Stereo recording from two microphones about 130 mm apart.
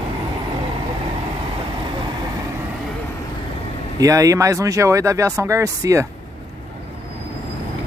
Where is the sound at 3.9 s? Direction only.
25° right (ahead or behind).